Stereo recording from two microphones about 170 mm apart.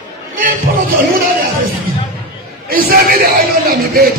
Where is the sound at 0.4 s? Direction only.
60° right (ahead or behind).